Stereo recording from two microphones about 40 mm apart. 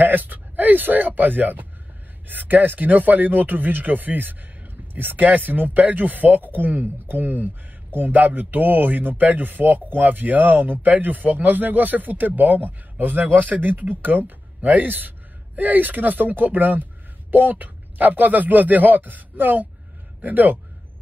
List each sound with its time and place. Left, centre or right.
0.0 s speech: right
5.2 s a man's voice: right
8.2 s a man's voice: right